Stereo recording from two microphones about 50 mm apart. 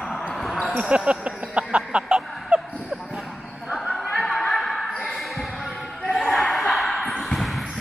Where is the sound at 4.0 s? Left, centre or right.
Centre.